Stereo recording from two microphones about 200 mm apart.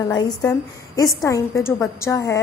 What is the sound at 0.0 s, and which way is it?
A woman's voice, 20° left (ahead or behind).